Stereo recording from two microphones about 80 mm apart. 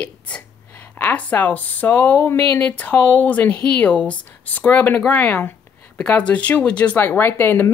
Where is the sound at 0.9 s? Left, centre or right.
Left.